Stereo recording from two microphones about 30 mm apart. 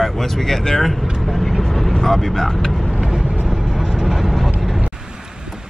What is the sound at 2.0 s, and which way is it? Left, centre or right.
Speech, centre.